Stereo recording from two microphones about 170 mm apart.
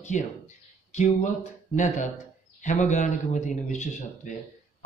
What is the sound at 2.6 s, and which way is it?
Speech, 45° left (ahead or behind).